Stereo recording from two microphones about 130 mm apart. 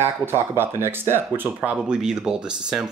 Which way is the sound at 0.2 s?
15° right (ahead or behind).